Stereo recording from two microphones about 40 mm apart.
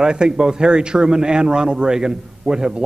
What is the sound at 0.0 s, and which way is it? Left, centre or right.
A woman's voice, centre.